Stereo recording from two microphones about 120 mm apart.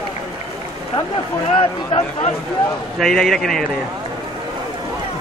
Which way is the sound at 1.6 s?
50° left (ahead or behind).